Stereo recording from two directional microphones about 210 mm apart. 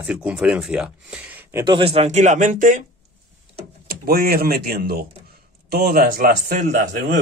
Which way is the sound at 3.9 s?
45° right (ahead or behind).